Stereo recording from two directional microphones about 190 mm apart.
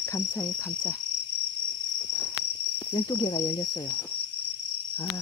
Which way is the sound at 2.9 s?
20° left (ahead or behind).